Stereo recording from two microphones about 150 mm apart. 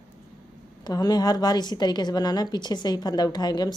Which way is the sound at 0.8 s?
25° left (ahead or behind).